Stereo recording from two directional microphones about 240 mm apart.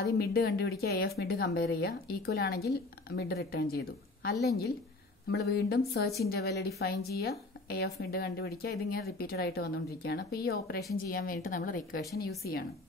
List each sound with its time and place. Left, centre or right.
0.0 s a woman's voice: left